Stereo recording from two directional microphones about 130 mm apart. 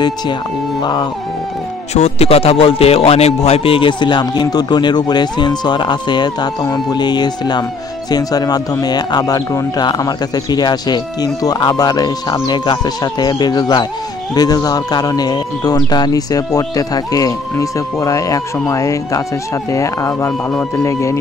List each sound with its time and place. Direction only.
2.0 s a man's voice: 55° left (ahead or behind); by 21.2 s 25° left (ahead or behind)